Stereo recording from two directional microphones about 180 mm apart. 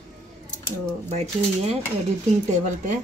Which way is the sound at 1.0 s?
35° right (ahead or behind).